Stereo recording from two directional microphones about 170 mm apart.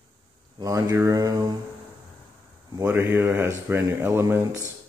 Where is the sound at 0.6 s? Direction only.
20° right (ahead or behind).